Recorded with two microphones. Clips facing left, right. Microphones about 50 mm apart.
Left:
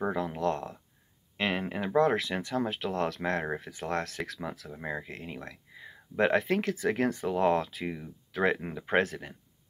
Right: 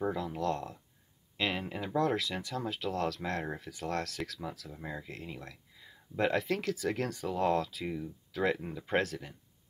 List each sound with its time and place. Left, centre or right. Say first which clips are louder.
0.0 s speech: left 3 dB; left
5.0 s speech: left 3 dB; left